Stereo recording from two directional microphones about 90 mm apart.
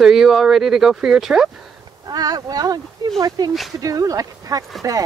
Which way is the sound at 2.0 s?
45° right (ahead or behind).